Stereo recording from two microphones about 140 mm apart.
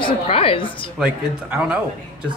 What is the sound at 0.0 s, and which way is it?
Speech, 40° left (ahead or behind).